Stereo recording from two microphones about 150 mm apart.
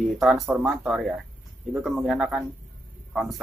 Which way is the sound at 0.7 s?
Centre (ahead or behind).